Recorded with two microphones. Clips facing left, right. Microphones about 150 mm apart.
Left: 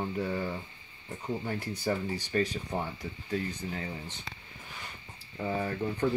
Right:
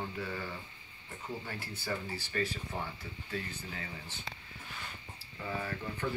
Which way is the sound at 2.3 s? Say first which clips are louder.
Left 6 dB; 30° left (ahead or behind).